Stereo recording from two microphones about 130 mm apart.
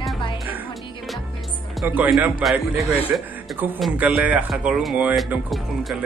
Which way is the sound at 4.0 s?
10° right (ahead or behind).